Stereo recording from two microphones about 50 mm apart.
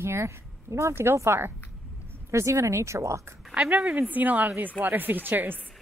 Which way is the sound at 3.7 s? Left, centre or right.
Right.